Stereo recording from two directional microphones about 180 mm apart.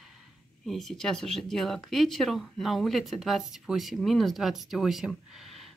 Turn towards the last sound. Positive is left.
turn(degrees=0)  # may be behind; listen again after turning